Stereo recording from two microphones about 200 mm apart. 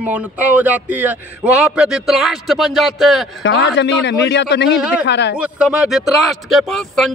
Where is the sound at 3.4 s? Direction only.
60° left (ahead or behind).